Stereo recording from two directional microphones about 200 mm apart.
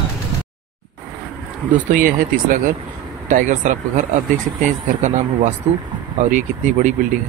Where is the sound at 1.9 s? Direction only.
45° right (ahead or behind).